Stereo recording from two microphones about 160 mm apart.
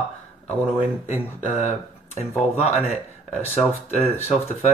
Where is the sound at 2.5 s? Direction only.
40° left (ahead or behind).